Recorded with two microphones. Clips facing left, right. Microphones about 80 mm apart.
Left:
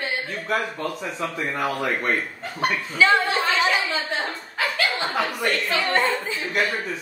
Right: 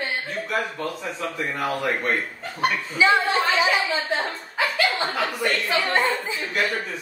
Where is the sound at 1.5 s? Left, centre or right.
Centre.